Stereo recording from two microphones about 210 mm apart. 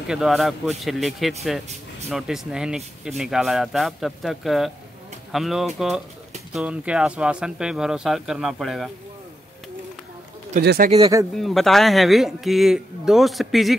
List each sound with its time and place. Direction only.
0.1 s a man's voice: centre (ahead or behind)
10.6 s speech: 50° right (ahead or behind)
11.3 s a man's voice: centre (ahead or behind)